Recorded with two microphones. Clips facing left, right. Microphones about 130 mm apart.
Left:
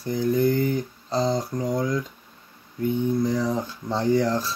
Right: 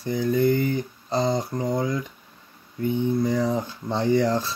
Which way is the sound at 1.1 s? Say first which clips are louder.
Even; 20° right (ahead or behind).